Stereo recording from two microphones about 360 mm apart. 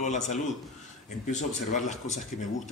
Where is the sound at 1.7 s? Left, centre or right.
Centre.